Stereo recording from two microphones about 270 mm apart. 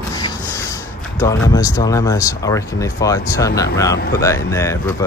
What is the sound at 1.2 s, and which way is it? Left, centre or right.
Speech, centre.